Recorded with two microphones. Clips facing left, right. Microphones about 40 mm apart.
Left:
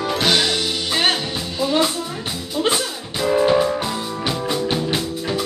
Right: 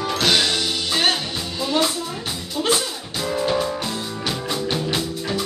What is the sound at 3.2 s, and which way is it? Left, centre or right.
Music, centre.